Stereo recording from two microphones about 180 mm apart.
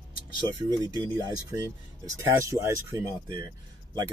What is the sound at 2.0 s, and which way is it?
Speech, 15° right (ahead or behind).